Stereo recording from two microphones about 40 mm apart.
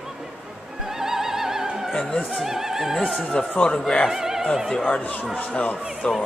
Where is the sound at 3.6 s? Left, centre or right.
Left.